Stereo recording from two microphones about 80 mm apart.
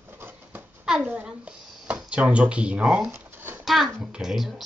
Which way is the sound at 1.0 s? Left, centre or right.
Centre.